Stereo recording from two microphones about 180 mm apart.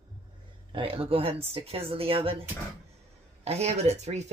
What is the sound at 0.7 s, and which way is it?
Speech, 30° right (ahead or behind).